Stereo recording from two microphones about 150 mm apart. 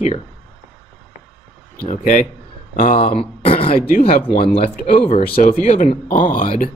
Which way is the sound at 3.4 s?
40° left (ahead or behind).